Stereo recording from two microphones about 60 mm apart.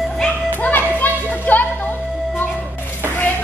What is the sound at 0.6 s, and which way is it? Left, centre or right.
Children playing, left.